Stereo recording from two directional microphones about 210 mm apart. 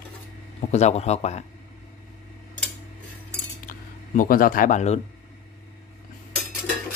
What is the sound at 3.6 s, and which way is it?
Speech, 40° left (ahead or behind).